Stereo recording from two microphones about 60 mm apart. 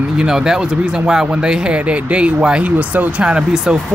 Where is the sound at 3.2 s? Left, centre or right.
Centre.